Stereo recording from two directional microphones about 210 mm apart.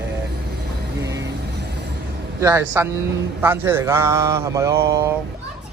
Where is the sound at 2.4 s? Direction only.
10° right (ahead or behind).